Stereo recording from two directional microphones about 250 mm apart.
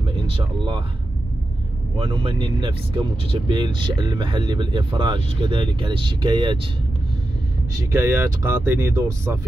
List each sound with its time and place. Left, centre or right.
0.1 s speech: centre
2.0 s speech: right
8.0 s speech: centre